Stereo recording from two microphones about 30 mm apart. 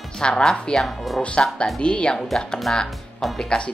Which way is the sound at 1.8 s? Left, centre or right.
Left.